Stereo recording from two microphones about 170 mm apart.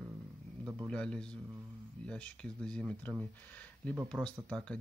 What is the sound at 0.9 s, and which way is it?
Speech, 5° left (ahead or behind).